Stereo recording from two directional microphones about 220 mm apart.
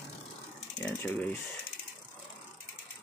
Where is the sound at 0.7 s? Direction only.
10° left (ahead or behind).